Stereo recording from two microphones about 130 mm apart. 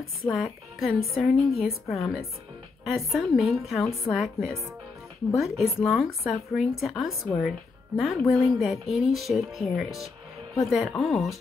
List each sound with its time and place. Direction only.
0.2 s speech: centre (ahead or behind)